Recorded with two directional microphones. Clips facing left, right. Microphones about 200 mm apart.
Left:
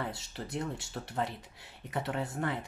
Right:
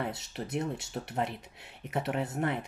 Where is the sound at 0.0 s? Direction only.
20° right (ahead or behind).